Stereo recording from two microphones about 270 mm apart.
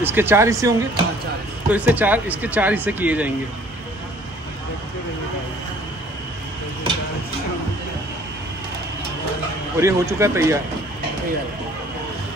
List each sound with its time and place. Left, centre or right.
0.0 s speech: centre
9.8 s speech: centre